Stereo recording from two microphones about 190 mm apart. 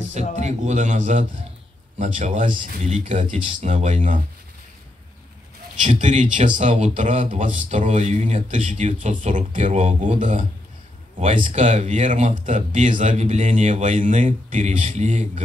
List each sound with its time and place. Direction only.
0.4 s speech: 35° right (ahead or behind)
5.8 s speech: 40° right (ahead or behind)